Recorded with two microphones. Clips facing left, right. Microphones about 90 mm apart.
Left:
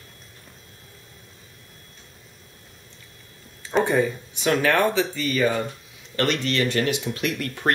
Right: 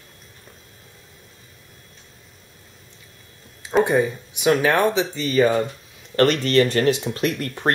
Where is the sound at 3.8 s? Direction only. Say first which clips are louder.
Right 2 dB; 15° right (ahead or behind).